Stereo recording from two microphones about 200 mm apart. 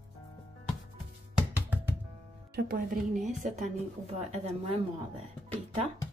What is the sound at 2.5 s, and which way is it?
Speech, 50° right (ahead or behind).